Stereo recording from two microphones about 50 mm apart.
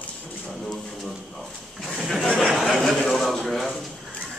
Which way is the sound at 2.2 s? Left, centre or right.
Centre.